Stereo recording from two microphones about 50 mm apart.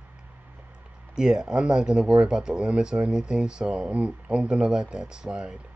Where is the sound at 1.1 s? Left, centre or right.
Centre.